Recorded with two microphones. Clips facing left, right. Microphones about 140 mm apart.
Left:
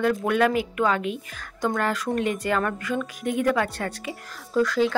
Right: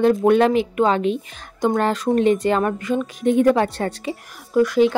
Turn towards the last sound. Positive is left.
turn(degrees=-20)  # may be behind; listen again after turning